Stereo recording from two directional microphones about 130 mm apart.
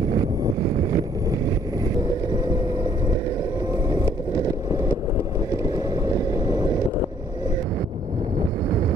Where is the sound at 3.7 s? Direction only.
25° right (ahead or behind).